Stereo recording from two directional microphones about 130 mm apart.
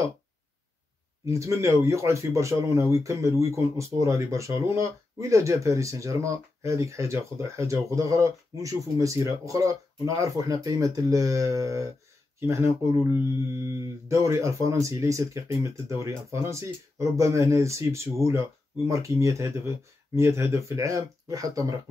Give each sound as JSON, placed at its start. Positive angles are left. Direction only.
{"t": 1.2, "sound": "speech", "side_deg": -20}